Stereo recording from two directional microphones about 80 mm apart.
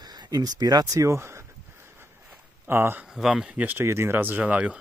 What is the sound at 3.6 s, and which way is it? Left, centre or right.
Speech, right.